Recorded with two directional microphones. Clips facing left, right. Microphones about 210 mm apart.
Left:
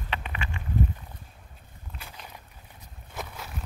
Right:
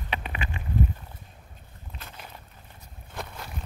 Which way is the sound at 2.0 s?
10° left (ahead or behind).